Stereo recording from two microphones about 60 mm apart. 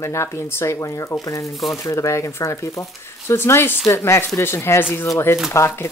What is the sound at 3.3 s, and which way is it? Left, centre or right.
Speech, left.